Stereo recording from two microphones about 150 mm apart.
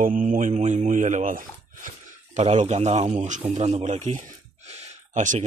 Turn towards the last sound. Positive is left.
turn(degrees=-50)  # may be behind; listen again after turning